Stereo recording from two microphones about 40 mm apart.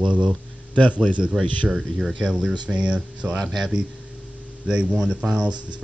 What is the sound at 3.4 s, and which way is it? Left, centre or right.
Speech, centre.